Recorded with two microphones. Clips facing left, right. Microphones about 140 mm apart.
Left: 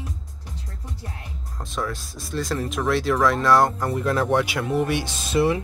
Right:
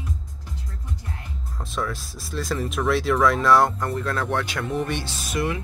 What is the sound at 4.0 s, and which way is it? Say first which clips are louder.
Speech: left 6 dB; 15° left (ahead or behind).